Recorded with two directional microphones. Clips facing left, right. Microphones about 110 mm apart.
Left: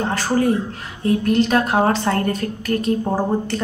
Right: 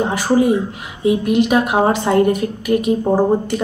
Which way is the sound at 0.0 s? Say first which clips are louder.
Right 4 dB; 10° right (ahead or behind).